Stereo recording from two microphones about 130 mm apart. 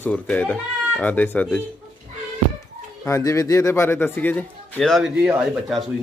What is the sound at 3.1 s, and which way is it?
Speech, 25° left (ahead or behind).